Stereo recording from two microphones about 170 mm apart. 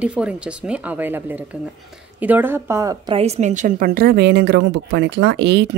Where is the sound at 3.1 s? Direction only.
40° right (ahead or behind).